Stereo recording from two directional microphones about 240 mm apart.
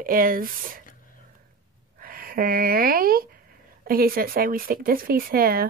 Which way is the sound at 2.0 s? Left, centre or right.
Right.